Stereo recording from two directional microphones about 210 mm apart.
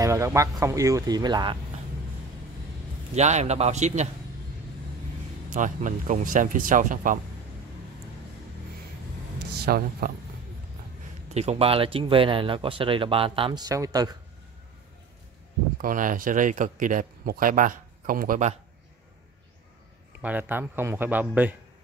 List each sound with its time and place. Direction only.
0.0 s speech: 15° right (ahead or behind)
3.2 s speech: 35° right (ahead or behind)
5.5 s speech: 35° right (ahead or behind)
9.6 s speech: 45° right (ahead or behind)
11.3 s speech: 30° right (ahead or behind)
15.8 s speech: 40° right (ahead or behind)
20.2 s speech: 10° right (ahead or behind)